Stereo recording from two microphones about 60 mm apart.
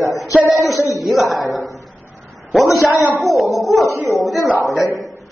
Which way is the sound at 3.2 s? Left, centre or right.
Centre.